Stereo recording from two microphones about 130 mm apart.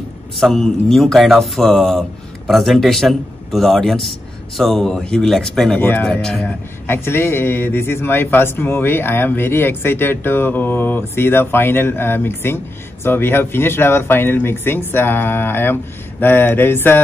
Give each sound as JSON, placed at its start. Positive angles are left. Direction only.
{"t": 0.4, "sound": "speech", "side_deg": 5}
{"t": 5.8, "sound": "speech", "side_deg": 15}
{"t": 6.0, "sound": "speech", "side_deg": 5}
{"t": 6.9, "sound": "speech", "side_deg": 20}